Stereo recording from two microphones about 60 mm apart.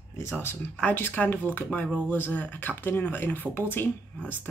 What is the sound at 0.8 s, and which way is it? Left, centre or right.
Speech, left.